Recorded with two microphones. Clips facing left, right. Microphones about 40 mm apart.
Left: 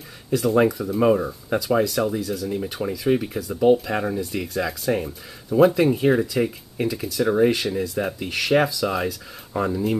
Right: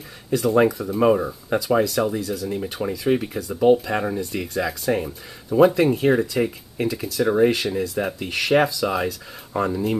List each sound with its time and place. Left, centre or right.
0.3 s speech: centre